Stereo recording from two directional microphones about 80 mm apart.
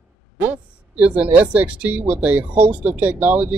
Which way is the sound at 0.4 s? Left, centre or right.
Centre.